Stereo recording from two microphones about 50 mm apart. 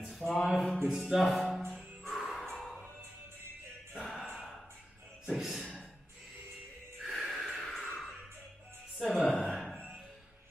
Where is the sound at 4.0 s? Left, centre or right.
Centre.